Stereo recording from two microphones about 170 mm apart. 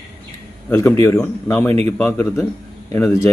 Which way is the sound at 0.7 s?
15° left (ahead or behind).